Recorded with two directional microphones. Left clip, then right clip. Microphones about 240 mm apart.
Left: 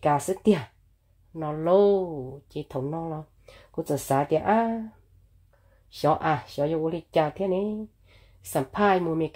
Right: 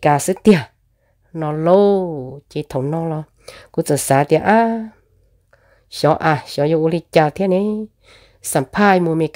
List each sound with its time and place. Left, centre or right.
0.0 s speech: right